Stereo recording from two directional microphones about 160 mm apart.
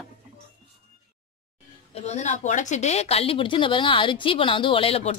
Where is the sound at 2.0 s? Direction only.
45° left (ahead or behind).